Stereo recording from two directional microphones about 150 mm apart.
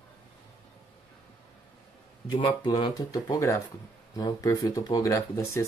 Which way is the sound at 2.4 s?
30° left (ahead or behind).